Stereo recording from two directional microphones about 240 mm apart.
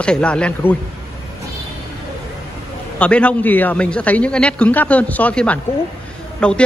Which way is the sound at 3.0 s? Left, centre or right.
Centre.